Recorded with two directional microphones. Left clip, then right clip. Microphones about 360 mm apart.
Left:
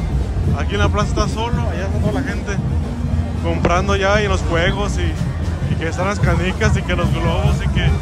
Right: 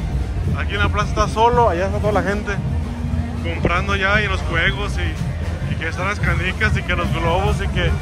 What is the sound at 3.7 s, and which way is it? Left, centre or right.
Speech, centre.